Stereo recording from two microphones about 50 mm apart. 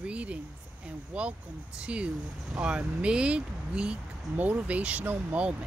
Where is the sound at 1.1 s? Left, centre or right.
Right.